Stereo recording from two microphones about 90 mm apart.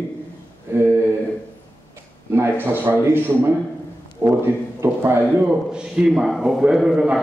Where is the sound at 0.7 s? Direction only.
25° right (ahead or behind).